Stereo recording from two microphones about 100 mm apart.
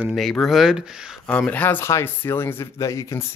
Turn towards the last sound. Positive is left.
turn(degrees=30)  # may be behind; listen again after turning